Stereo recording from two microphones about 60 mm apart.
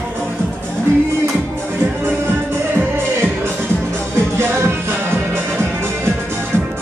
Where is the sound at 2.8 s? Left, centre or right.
Right.